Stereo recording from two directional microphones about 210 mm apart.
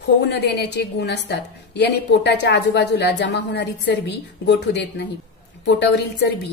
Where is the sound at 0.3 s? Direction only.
55° left (ahead or behind).